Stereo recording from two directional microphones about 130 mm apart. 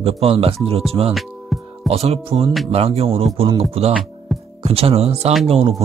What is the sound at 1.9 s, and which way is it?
Speech, 50° right (ahead or behind).